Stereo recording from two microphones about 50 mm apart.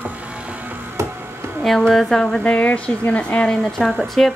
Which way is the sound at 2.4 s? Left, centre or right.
Left.